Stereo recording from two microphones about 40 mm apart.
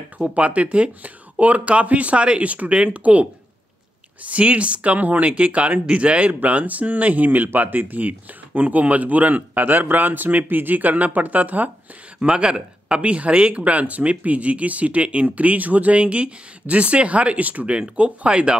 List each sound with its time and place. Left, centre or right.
0.2 s speech: right
12.2 s speech: right
17.7 s speech: right